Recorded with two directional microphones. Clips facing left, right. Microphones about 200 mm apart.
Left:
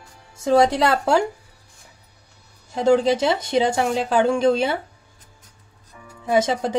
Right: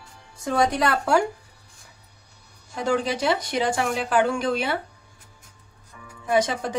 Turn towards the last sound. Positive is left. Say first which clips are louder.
# left 3 dB
turn(degrees=25)  # may be behind; listen again after turning